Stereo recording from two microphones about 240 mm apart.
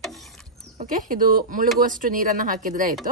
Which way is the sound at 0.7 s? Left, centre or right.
Right.